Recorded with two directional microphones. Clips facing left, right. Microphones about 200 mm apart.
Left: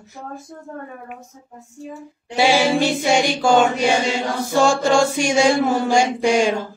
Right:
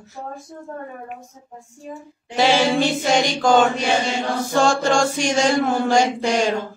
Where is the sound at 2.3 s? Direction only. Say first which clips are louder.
Left 1 dB; 10° left (ahead or behind).